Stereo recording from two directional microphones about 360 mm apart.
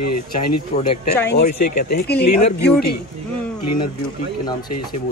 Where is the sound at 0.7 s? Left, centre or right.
Left.